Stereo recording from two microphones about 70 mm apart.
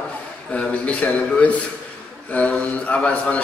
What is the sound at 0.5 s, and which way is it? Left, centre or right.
A man's voice, centre.